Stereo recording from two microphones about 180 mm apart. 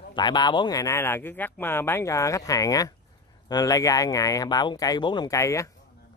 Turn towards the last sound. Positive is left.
turn(degrees=15)  # may be behind; listen again after turning